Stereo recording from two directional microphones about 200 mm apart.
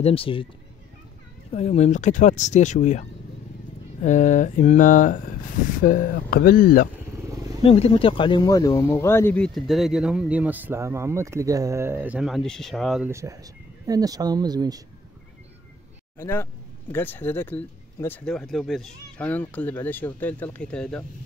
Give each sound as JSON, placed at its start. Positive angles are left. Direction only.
{"t": 0.0, "sound": "speech", "side_deg": 25}
{"t": 1.5, "sound": "speech", "side_deg": 30}
{"t": 7.2, "sound": "wild animals", "side_deg": -15}
{"t": 7.6, "sound": "speech", "side_deg": 25}
{"t": 13.1, "sound": "speech", "side_deg": -15}
{"t": 16.2, "sound": "speech", "side_deg": 10}